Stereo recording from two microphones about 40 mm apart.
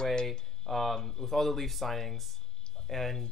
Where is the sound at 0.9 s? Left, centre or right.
Centre.